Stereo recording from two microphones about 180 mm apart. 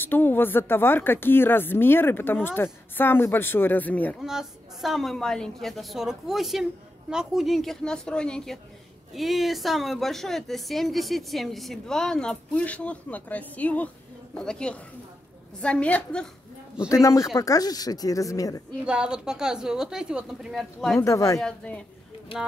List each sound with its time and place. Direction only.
0.0 s a woman's voice: 10° left (ahead or behind)
4.2 s a woman's voice: centre (ahead or behind)
16.9 s speech: 20° left (ahead or behind)
18.9 s a woman's voice: 5° right (ahead or behind)
21.0 s a woman's voice: 15° left (ahead or behind)
21.4 s a woman's voice: 5° left (ahead or behind)